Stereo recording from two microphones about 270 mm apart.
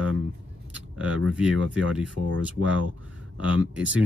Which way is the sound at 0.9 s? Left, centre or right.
Centre.